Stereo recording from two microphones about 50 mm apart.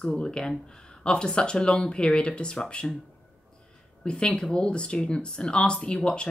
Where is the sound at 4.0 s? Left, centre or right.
Centre.